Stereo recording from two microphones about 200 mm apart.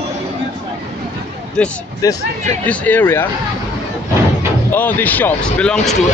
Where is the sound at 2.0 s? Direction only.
15° left (ahead or behind).